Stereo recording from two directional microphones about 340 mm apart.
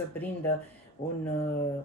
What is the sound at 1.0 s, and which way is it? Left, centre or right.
Speech, centre.